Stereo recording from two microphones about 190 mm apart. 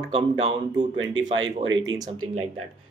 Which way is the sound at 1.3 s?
90° right.